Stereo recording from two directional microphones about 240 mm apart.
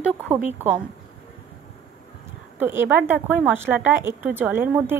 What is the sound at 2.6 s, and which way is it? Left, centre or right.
A woman's voice, centre.